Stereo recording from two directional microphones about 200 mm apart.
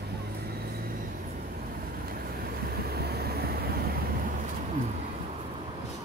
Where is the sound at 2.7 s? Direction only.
50° right (ahead or behind).